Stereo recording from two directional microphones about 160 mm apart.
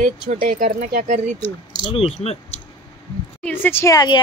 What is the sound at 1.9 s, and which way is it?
Speech, 40° left (ahead or behind).